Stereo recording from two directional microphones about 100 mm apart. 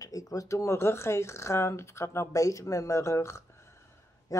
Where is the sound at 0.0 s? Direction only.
35° left (ahead or behind).